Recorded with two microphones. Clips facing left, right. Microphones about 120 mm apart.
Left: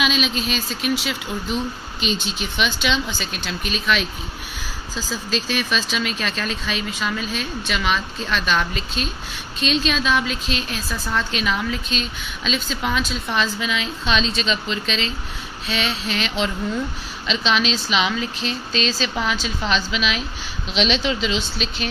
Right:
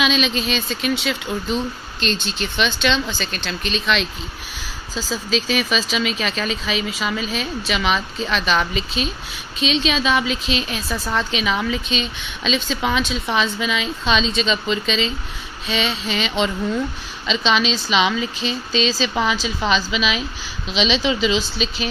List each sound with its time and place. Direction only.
0.0 s a woman's voice: 5° left (ahead or behind)
5.3 s a woman's voice: centre (ahead or behind)